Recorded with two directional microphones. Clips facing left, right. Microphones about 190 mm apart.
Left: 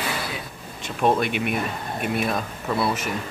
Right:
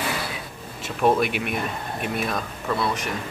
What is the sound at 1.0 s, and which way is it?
Speech, 5° right (ahead or behind).